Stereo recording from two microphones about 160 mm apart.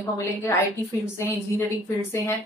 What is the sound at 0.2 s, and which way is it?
A woman's voice, 15° left (ahead or behind).